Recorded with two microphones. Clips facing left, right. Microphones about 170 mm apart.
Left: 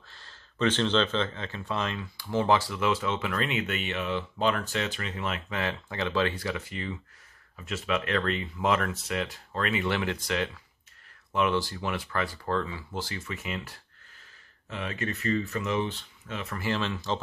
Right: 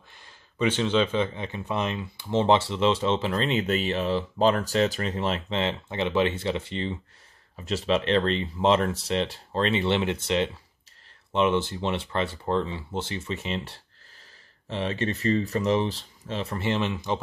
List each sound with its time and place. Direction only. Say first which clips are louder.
0.1 s speech: right 1 dB; 15° right (ahead or behind)